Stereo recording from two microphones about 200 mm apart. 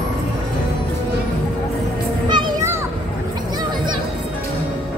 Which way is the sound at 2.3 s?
25° right (ahead or behind).